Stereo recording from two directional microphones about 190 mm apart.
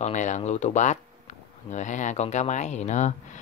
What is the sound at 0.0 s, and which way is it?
Speech, 40° left (ahead or behind).